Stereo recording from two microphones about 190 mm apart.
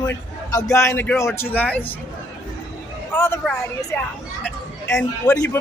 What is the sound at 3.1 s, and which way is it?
Speech, 10° left (ahead or behind).